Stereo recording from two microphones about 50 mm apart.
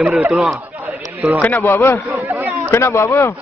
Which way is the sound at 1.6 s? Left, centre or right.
Left.